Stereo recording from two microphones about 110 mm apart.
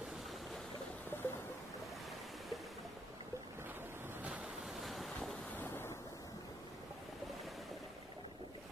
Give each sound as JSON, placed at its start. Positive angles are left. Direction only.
{"t": 1.1, "sound": "a sound", "side_deg": 20}
{"t": 4.2, "sound": "waves", "side_deg": -5}
{"t": 5.6, "sound": "waves", "side_deg": 20}